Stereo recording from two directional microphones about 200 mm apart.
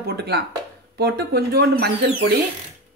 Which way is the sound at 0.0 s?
55° right (ahead or behind).